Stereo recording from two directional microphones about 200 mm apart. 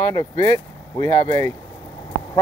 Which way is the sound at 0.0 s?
20° left (ahead or behind).